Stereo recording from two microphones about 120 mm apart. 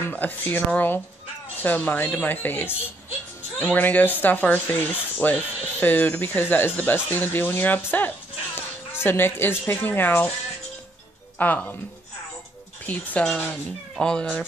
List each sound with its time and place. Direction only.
0.0 s speech: 15° left (ahead or behind)
3.7 s speech: 15° left (ahead or behind)
11.3 s speech: 15° left (ahead or behind)
12.8 s speech: 10° left (ahead or behind)